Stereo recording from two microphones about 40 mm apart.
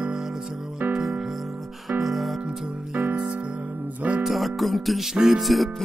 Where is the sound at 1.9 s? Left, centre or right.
Centre.